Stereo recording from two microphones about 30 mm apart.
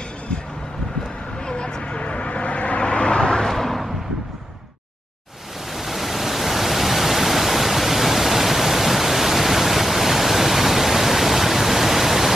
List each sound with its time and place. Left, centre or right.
1.5 s vehicle: left
3.3 s a sound: centre
5.8 s pink noise: centre